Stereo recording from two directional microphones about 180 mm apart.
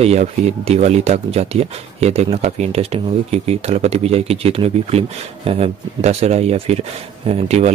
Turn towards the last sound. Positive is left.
turn(degrees=-35)  # may be behind; listen again after turning